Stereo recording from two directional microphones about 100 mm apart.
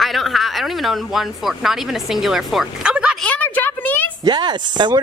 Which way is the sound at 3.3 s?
15° left (ahead or behind).